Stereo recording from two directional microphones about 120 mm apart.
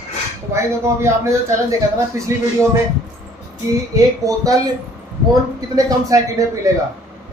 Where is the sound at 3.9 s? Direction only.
30° right (ahead or behind).